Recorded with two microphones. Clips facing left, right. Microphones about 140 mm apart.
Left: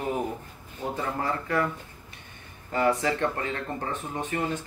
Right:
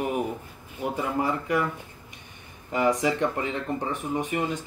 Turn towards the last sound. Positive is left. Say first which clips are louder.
# right 2 dB
turn(degrees=-15)  # may be behind; listen again after turning